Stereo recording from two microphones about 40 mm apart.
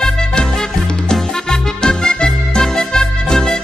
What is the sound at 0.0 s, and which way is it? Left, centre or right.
Music, centre.